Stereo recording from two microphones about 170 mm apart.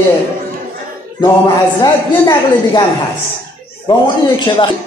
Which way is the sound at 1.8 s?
25° left (ahead or behind).